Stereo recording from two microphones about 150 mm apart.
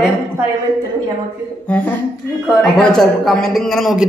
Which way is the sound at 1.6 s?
10° left (ahead or behind).